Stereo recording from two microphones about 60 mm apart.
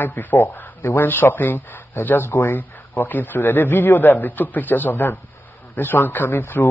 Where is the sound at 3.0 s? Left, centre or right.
Left.